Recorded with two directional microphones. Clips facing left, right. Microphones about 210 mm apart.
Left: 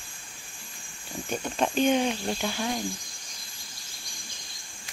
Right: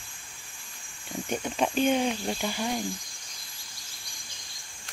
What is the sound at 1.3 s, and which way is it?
Speech, 10° right (ahead or behind).